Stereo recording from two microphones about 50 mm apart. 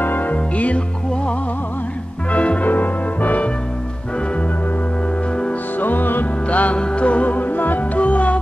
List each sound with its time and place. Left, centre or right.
0.0 s music: left
2.3 s music: left
5.8 s music: left
6.5 s music: left